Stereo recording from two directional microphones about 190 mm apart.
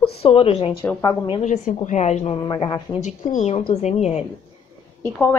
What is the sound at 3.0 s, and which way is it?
A woman's voice, 40° left (ahead or behind).